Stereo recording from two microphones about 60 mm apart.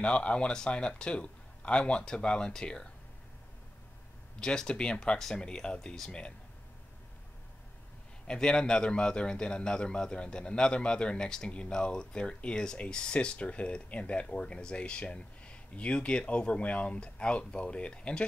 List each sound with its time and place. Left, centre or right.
0.0 s a man's voice: centre
4.4 s a man's voice: centre
8.3 s a man's voice: centre